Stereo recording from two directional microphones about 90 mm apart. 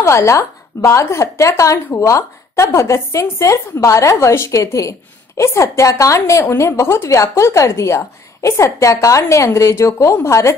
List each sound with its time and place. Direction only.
0.0 s a woman's voice: 35° left (ahead or behind)